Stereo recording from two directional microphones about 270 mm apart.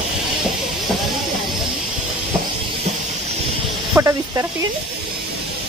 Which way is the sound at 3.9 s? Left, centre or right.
Centre.